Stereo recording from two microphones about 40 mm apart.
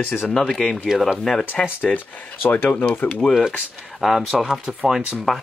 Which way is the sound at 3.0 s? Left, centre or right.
Left.